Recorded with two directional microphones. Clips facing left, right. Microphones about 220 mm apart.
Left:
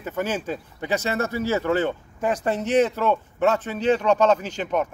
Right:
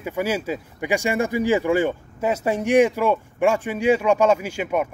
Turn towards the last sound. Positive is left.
turn(degrees=-10)  # may be behind; listen again after turning